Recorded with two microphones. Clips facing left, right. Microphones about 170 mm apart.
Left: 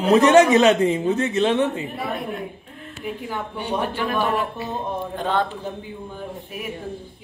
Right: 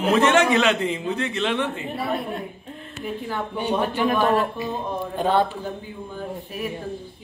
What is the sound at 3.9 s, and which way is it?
Speech, 15° right (ahead or behind).